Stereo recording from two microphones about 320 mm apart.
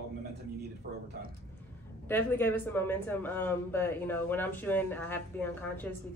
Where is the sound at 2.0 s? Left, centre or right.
Centre.